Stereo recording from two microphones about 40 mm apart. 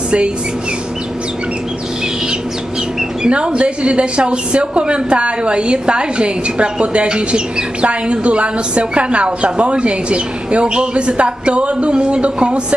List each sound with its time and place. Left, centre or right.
3.3 s a woman's voice: right